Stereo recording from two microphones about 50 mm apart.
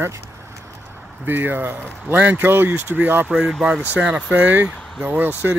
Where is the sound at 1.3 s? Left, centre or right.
Right.